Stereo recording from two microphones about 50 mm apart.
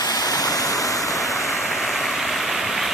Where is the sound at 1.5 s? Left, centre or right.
Centre.